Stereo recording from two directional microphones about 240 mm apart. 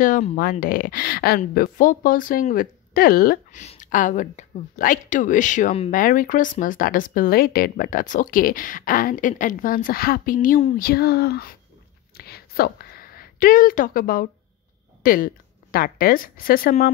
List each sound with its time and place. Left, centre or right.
0.0 s speech: left
12.2 s a sound: left
15.0 s speech: left